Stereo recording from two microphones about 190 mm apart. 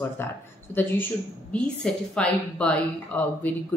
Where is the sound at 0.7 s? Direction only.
10° left (ahead or behind).